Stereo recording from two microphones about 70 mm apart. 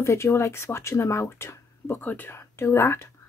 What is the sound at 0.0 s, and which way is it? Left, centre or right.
Speech, left.